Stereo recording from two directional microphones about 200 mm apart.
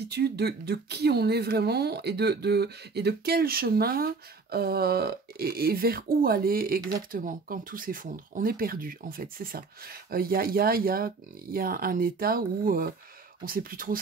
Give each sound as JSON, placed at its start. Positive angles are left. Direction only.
{"t": 0.1, "sound": "speech", "side_deg": -55}